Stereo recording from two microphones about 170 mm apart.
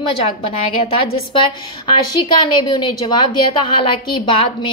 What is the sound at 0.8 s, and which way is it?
A woman's voice, 30° left (ahead or behind).